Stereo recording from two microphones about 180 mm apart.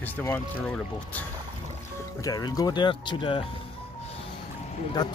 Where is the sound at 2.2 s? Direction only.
20° left (ahead or behind).